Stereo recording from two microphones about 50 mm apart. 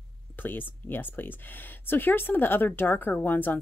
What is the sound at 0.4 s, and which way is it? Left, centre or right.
A woman's voice, left.